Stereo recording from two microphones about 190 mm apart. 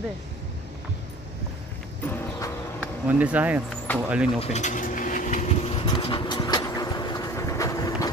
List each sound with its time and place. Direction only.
2.0 s horse: 10° left (ahead or behind)
3.1 s speech: 10° right (ahead or behind)
3.9 s speech: 10° left (ahead or behind)
4.4 s a sound: 35° left (ahead or behind); by 8.1 s 20° left (ahead or behind)